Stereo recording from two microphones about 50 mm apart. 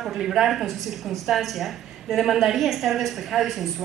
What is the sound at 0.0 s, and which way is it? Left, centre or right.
A woman's voice, centre.